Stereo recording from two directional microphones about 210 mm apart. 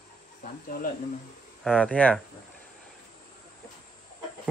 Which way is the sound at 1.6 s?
5° left (ahead or behind).